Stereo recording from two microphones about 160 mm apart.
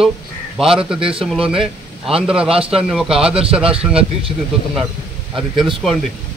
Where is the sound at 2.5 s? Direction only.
35° right (ahead or behind).